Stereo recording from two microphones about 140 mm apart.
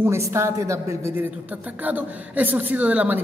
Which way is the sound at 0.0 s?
20° right (ahead or behind).